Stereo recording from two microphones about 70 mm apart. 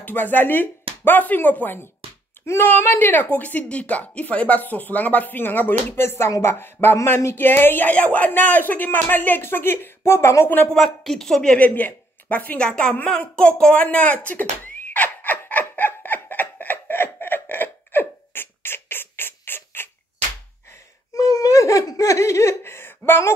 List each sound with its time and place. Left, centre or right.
0.0 s a woman's voice: left
10.7 s speech: centre
11.5 s speech: left
12.6 s speech: centre
13.8 s a sound: left
21.1 s laughter: left